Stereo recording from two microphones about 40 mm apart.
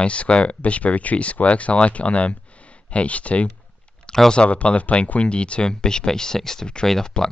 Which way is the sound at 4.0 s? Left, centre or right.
Centre.